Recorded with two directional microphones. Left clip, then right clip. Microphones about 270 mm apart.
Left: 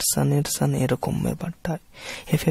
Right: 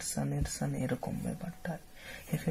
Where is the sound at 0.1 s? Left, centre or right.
Left.